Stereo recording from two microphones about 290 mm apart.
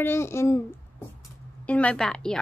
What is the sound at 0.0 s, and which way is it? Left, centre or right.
A child's voice, centre.